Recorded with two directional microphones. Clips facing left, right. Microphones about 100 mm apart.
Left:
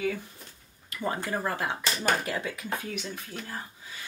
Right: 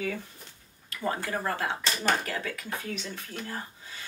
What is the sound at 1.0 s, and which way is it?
Speech, 20° left (ahead or behind).